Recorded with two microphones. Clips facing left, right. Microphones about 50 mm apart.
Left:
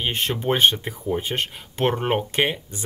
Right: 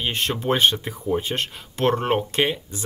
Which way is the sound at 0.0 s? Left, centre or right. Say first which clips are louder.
Even; centre.